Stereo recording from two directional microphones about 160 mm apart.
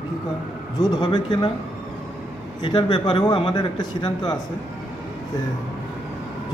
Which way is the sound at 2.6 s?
30° left (ahead or behind).